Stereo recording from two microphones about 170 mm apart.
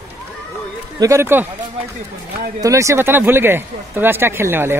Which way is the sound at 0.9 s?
20° right (ahead or behind).